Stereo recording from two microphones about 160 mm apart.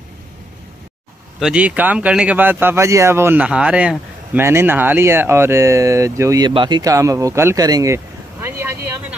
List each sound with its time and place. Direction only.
1.4 s speech: 5° right (ahead or behind)